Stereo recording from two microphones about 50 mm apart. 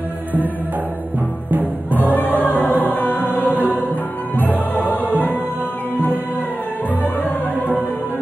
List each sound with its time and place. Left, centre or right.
1.5 s music: right
2.4 s music: left
7.2 s music: left